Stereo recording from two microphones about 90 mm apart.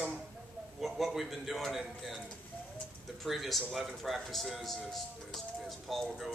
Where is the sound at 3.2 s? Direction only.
Centre (ahead or behind).